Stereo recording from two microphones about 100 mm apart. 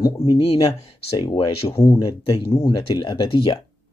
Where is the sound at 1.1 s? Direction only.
50° left (ahead or behind).